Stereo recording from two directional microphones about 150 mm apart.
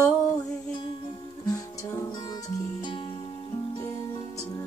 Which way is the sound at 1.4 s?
25° left (ahead or behind).